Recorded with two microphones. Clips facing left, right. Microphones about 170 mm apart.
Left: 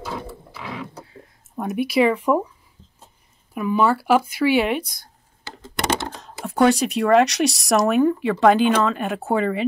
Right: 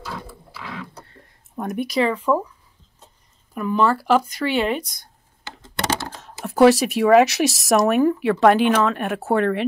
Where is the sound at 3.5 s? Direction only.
5° left (ahead or behind).